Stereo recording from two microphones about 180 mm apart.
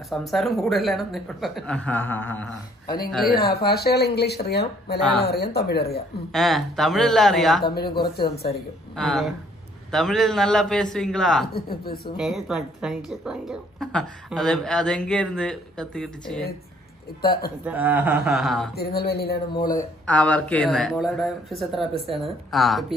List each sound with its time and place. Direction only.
0.1 s a woman's voice: centre (ahead or behind)
3.3 s speech: 60° left (ahead or behind)
6.3 s a woman's voice: centre (ahead or behind)
7.6 s speech: 60° left (ahead or behind)
8.9 s a woman's voice: centre (ahead or behind)
11.5 s speech: 60° left (ahead or behind)
12.2 s a woman's voice: centre (ahead or behind)
17.2 s speech: 60° left (ahead or behind)
17.6 s a woman's voice: 10° right (ahead or behind)
18.8 s speech: 60° left (ahead or behind)
19.5 s speech: 20° left (ahead or behind)
20.1 s a woman's voice: 5° left (ahead or behind)